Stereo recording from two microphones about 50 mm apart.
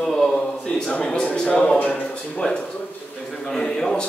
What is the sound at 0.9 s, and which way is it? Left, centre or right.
Speech, left.